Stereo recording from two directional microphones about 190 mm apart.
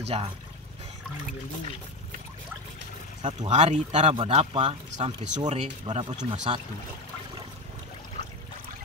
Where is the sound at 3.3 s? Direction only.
40° right (ahead or behind).